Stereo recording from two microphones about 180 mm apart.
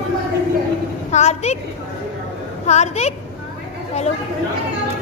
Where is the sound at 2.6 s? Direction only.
40° left (ahead or behind).